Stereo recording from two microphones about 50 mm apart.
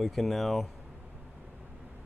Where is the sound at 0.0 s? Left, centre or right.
Centre.